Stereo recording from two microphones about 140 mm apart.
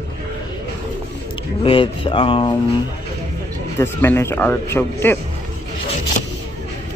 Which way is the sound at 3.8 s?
15° left (ahead or behind).